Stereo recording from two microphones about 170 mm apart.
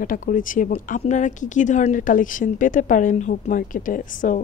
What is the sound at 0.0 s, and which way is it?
Speech, 50° left (ahead or behind).